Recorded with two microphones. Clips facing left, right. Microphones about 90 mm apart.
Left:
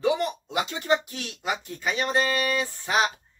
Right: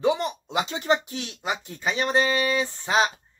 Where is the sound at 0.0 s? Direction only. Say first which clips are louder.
Right 1 dB; 25° right (ahead or behind).